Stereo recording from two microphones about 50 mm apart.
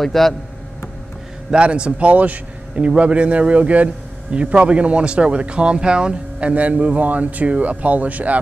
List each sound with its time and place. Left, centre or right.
0.0 s speech: centre
1.5 s a man's voice: right